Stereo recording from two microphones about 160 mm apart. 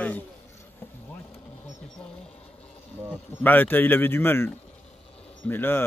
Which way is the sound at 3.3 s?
10° left (ahead or behind).